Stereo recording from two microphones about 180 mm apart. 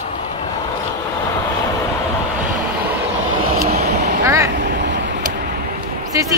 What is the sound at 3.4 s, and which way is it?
Vehicle, 55° right (ahead or behind).